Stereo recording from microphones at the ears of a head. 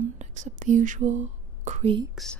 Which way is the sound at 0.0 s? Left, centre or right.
Right.